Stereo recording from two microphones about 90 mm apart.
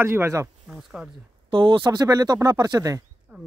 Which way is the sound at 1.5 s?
65° right (ahead or behind).